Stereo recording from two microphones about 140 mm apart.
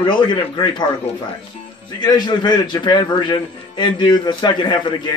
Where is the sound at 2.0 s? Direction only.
30° left (ahead or behind).